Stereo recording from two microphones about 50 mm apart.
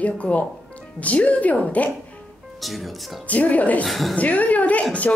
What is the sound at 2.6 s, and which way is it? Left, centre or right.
Speech, centre.